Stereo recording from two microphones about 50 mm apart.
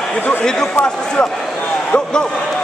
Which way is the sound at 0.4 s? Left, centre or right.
Centre.